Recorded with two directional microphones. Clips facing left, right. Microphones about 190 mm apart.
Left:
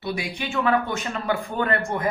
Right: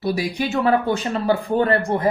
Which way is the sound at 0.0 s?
40° right (ahead or behind).